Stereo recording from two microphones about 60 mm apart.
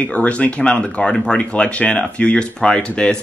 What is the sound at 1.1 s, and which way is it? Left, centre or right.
Speech, centre.